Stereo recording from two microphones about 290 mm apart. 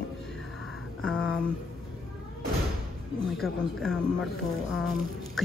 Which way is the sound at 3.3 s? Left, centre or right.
Centre.